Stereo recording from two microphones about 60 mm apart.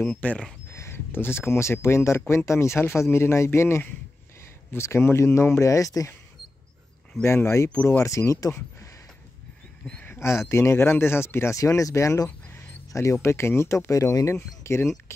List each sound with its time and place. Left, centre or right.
0.0 s speech: left
0.7 s speech: left
7.3 s speech: left
10.1 s speech: left
11.5 s speech: left